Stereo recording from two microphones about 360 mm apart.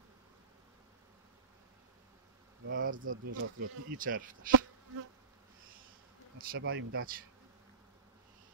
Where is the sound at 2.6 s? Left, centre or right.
Right.